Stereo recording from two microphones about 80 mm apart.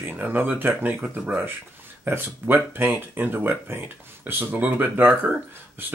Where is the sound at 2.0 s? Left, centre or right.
Right.